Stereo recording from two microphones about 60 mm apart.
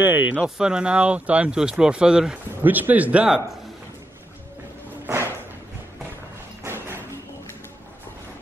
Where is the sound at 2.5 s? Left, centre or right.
Right.